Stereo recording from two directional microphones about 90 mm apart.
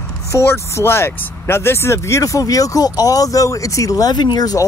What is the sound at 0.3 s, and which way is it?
Speech, 30° left (ahead or behind).